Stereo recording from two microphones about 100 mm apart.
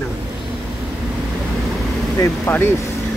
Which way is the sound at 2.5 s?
25° left (ahead or behind).